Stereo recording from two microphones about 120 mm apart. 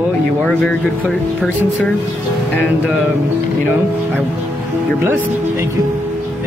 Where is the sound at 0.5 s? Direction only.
10° left (ahead or behind).